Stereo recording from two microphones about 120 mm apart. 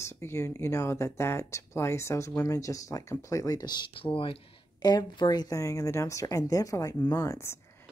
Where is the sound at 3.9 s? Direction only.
50° left (ahead or behind); by 7.5 s 25° left (ahead or behind).